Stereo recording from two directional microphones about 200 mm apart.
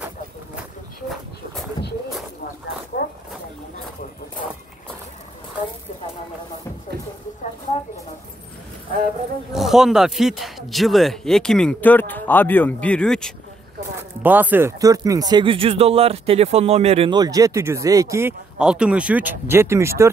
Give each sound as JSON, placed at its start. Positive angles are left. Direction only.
{"t": 1.0, "sound": "dog", "side_deg": 0}
{"t": 2.9, "sound": "a sound", "side_deg": 50}
{"t": 9.5, "sound": "speech", "side_deg": 0}
{"t": 14.2, "sound": "speech", "side_deg": -10}